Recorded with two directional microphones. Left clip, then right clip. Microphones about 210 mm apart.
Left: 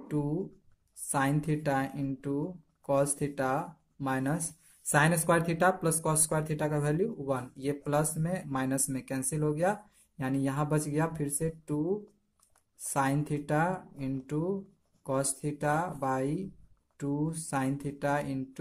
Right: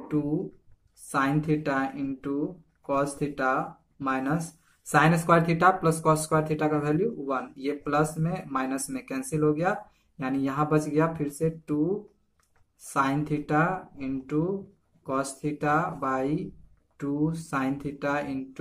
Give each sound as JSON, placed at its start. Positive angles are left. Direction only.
{"t": 1.1, "sound": "speech", "side_deg": 35}
{"t": 12.8, "sound": "speech", "side_deg": 30}